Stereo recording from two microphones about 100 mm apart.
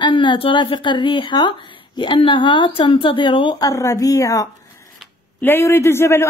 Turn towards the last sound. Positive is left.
turn(degrees=25)  # may be behind; listen again after turning